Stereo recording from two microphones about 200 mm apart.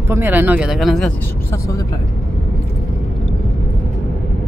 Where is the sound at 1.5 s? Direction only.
15° left (ahead or behind).